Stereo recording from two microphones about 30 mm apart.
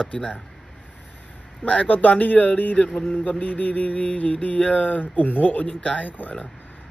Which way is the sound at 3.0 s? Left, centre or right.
Left.